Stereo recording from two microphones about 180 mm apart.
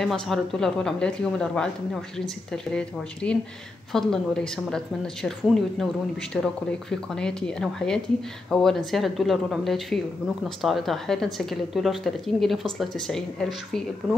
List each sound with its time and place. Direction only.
0.0 s speech: centre (ahead or behind)